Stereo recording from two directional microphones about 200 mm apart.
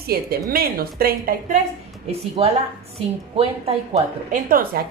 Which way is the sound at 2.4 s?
30° right (ahead or behind).